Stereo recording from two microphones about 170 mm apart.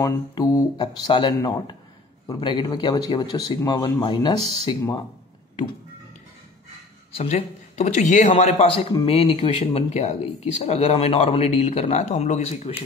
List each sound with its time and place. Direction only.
0.0 s speech: 20° left (ahead or behind)
7.2 s a man's voice: 40° left (ahead or behind)